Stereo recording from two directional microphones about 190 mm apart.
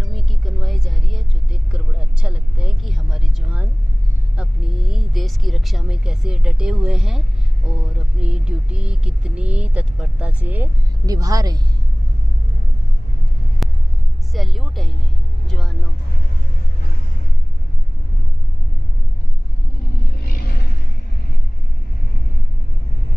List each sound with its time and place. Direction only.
0.0 s vehicle: centre (ahead or behind)
4.4 s a sound: centre (ahead or behind)
8.2 s speech: 5° right (ahead or behind)
13.6 s a sound: centre (ahead or behind)
14.3 s speech: centre (ahead or behind)
15.4 s vehicle: centre (ahead or behind)